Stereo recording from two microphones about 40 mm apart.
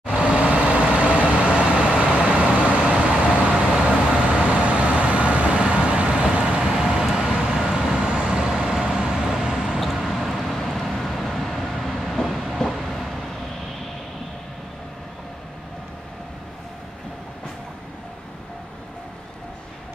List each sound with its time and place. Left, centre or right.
0.0 s vehicle: right
6.6 s vehicle: centre
8.4 s vehicle: centre
9.9 s vehicle: centre
10.6 s train: centre